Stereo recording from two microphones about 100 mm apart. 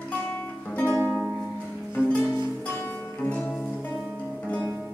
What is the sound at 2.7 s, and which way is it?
Music, 20° left (ahead or behind).